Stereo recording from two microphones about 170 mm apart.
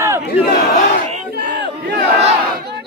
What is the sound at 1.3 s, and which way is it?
Battle cry, 80° right.